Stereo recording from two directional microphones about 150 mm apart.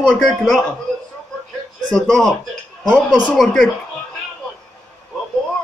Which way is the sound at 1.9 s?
5° left (ahead or behind).